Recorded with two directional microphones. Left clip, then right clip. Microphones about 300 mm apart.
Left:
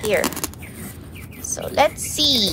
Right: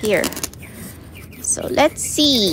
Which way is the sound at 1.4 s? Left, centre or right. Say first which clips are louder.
Right 2 dB; right.